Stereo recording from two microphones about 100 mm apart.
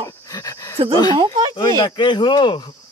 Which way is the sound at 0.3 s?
35° left (ahead or behind).